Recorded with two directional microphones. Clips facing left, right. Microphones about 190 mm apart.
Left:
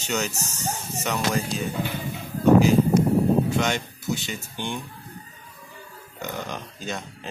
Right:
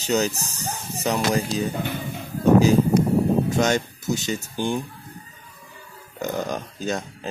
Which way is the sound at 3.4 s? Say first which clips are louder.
Right 4 dB; 45° right (ahead or behind).